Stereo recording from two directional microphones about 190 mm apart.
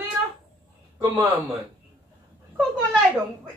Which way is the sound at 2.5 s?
5° right (ahead or behind).